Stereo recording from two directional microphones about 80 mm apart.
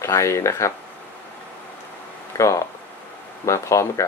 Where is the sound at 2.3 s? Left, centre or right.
Left.